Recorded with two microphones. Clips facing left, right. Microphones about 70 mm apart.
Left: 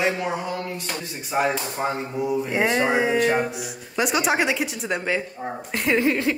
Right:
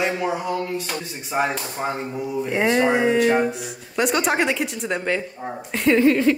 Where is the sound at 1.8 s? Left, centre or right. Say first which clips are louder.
Even; centre.